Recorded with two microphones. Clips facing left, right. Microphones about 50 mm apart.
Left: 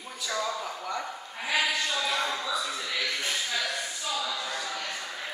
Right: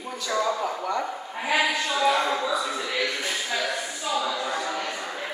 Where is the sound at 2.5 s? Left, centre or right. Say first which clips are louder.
Right 5 dB; centre.